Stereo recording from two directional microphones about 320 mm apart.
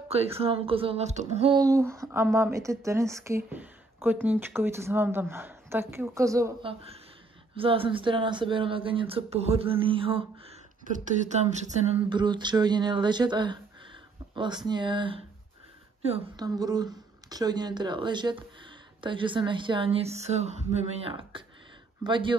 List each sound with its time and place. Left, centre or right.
0.3 s speech: centre